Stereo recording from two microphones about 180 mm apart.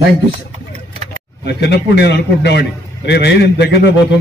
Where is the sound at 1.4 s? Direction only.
65° left (ahead or behind).